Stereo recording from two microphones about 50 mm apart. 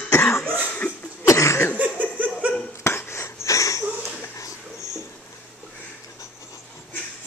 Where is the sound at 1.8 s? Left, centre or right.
Right.